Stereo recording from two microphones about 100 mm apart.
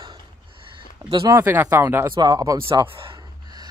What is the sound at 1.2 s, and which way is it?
Speech, 25° right (ahead or behind).